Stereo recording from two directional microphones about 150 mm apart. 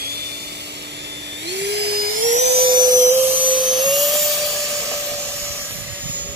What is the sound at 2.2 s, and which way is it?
Vacuum cleaner, 50° right (ahead or behind).